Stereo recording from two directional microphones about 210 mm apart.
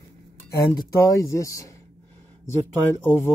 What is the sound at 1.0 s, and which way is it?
Speech, 15° left (ahead or behind).